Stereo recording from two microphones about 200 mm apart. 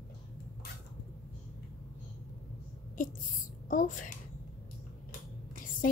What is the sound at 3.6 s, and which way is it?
Speech, 40° left (ahead or behind).